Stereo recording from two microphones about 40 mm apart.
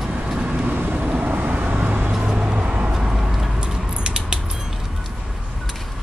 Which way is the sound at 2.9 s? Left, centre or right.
Centre.